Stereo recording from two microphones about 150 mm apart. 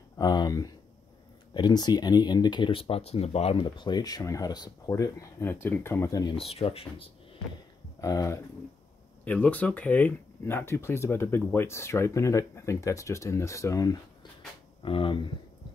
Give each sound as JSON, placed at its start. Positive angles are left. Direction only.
{"t": 0.2, "sound": "speech", "side_deg": 30}
{"t": 3.7, "sound": "speech", "side_deg": 30}
{"t": 6.5, "sound": "speech", "side_deg": 40}
{"t": 8.0, "sound": "speech", "side_deg": 20}
{"t": 9.2, "sound": "speech", "side_deg": 10}
{"t": 14.8, "sound": "speech", "side_deg": 35}